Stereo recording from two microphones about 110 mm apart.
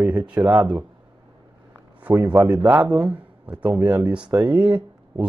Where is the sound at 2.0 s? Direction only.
15° right (ahead or behind).